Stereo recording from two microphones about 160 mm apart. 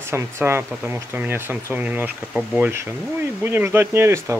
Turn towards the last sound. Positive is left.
turn(degrees=-15)  # may be behind; listen again after turning